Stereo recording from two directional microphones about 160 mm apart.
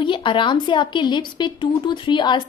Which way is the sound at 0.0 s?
30° left (ahead or behind).